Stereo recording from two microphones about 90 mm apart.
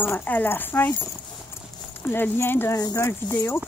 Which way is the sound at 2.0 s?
25° left (ahead or behind).